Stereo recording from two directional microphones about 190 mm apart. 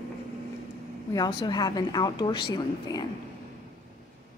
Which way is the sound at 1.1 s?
20° left (ahead or behind).